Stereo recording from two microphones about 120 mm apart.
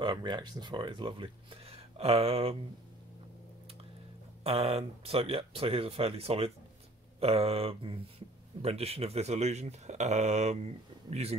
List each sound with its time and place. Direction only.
0.0 s speech: 40° right (ahead or behind); by 2.5 s 55° right (ahead or behind)
4.4 s speech: 55° right (ahead or behind)